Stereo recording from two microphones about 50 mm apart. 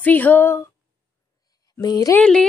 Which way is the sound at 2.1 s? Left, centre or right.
Left.